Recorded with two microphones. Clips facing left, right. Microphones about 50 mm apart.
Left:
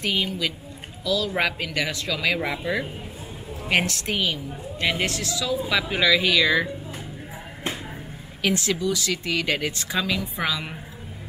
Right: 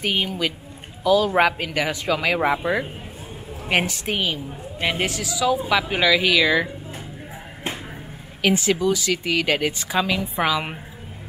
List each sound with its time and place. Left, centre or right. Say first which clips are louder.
0.0 s speech: right 2 dB; centre
8.4 s speech: right 4 dB; centre